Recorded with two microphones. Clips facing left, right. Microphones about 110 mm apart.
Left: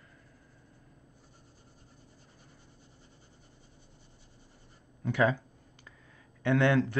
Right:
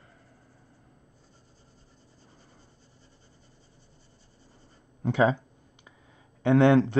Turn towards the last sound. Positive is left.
turn(degrees=-25)  # may be behind; listen again after turning